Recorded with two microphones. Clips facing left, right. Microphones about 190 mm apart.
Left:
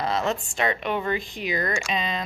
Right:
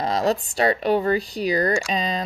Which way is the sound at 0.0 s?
35° right (ahead or behind).